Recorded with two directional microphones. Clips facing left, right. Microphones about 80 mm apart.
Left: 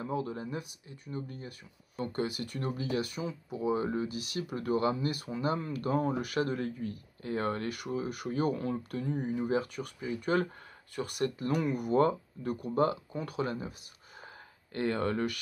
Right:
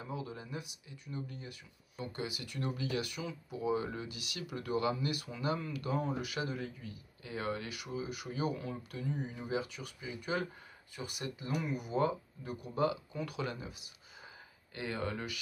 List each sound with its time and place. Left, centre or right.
0.0 s speech: left
14.7 s speech: left